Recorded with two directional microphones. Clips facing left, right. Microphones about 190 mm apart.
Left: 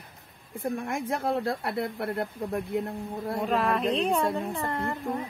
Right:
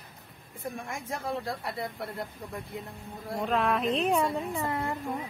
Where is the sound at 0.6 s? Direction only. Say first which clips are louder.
Left 7 dB; 60° left (ahead or behind).